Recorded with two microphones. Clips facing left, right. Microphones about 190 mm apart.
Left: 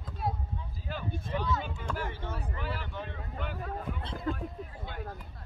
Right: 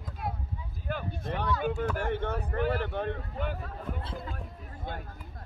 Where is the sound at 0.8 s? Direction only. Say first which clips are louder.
Right 4 dB; 55° right (ahead or behind).